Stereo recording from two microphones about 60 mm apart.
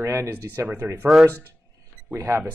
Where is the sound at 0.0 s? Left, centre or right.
Right.